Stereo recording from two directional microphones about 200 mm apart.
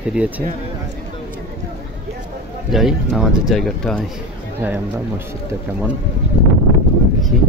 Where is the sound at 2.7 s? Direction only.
Centre (ahead or behind).